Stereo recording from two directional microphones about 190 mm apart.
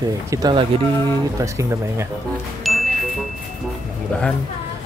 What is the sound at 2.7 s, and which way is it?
Chime, centre (ahead or behind).